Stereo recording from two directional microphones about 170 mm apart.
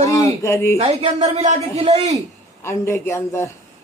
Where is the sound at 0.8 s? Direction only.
35° right (ahead or behind).